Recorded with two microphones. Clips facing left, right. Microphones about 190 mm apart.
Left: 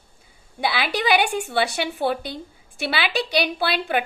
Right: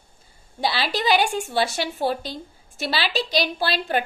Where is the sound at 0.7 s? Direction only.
60° left (ahead or behind).